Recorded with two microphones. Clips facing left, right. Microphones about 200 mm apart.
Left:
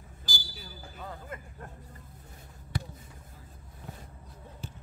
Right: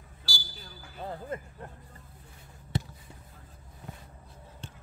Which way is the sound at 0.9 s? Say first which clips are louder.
Right 6 dB; 30° right (ahead or behind).